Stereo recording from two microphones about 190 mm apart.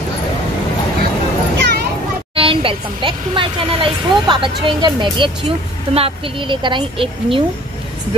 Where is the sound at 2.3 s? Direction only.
30° right (ahead or behind).